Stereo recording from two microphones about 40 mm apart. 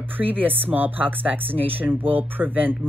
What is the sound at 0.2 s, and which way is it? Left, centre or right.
Speech, right.